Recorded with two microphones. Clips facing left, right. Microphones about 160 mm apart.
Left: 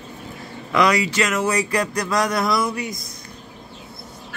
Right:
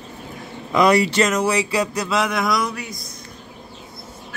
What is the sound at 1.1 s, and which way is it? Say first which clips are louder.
Speech: right 3 dB; 25° right (ahead or behind).